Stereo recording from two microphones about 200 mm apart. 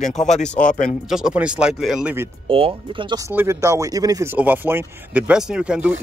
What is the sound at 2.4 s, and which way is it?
Speech, 25° right (ahead or behind).